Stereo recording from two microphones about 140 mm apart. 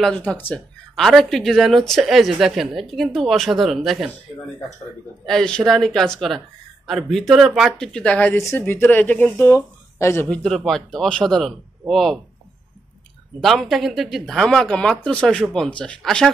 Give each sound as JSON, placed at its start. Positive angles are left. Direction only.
{"t": 0.0, "sound": "speech", "side_deg": 10}
{"t": 0.9, "sound": "speech", "side_deg": 0}
{"t": 5.2, "sound": "speech", "side_deg": 5}
{"t": 7.9, "sound": "speech", "side_deg": 10}
{"t": 10.3, "sound": "speech", "side_deg": 5}
{"t": 13.4, "sound": "speech", "side_deg": 0}